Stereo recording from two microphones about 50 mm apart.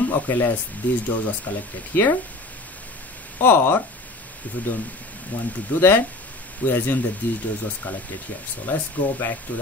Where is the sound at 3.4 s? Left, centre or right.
Left.